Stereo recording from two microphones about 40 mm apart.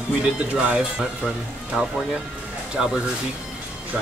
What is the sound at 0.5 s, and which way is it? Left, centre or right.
Speech, right.